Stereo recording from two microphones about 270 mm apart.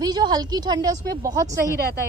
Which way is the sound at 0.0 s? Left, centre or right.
Centre.